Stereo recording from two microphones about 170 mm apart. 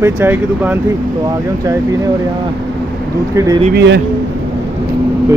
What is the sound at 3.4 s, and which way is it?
Speech, 15° right (ahead or behind).